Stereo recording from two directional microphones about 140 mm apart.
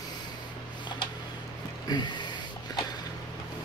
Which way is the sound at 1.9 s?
30° left (ahead or behind).